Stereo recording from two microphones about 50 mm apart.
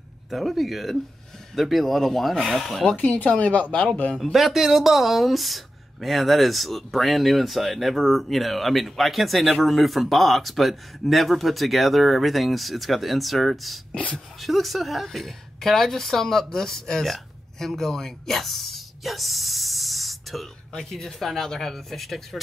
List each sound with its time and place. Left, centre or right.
0.3 s speech: centre
3.0 s speech: left
4.2 s a woman's voice: centre